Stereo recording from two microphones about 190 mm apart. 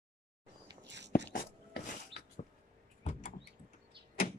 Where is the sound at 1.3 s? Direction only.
50° left (ahead or behind).